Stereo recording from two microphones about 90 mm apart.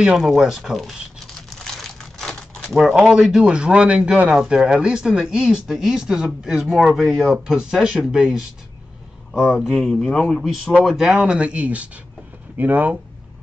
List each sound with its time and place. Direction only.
0.2 s speech: centre (ahead or behind)
1.5 s crumpling: 5° left (ahead or behind); by 4.3 s 10° right (ahead or behind)
4.3 s speech: 5° right (ahead or behind)